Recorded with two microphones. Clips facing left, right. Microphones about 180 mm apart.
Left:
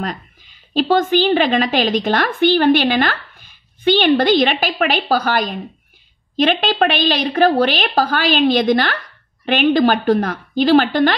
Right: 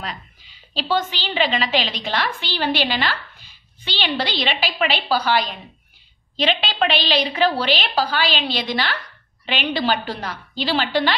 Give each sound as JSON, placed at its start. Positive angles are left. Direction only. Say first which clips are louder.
{"t": 0.0, "sound": "a woman's voice", "louder": "left 7 dB", "side_deg": 50}